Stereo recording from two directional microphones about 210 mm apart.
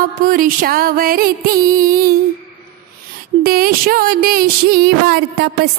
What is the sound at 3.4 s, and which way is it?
A woman's voice, 45° right (ahead or behind).